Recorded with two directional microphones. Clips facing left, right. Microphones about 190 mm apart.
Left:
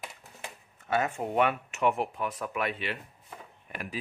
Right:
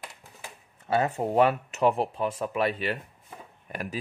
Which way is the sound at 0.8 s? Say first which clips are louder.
Right 4 dB; 35° right (ahead or behind).